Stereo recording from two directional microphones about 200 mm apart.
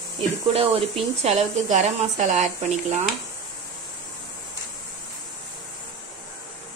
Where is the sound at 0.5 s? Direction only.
30° right (ahead or behind).